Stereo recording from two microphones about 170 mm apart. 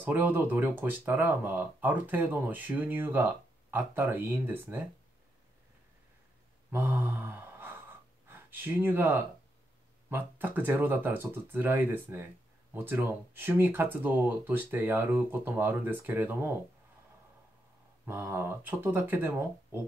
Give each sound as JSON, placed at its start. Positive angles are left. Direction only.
{"t": 0.0, "sound": "speech", "side_deg": -10}
{"t": 6.7, "sound": "mantra", "side_deg": -10}
{"t": 8.3, "sound": "speech", "side_deg": -10}
{"t": 18.0, "sound": "speech", "side_deg": -15}